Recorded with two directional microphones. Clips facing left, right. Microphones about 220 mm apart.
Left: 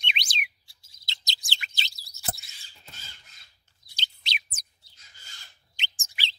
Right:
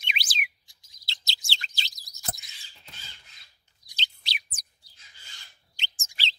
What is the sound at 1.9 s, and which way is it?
Chirp, 15° right (ahead or behind).